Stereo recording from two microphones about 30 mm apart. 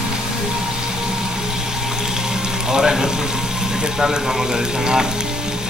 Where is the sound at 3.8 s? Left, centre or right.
Centre.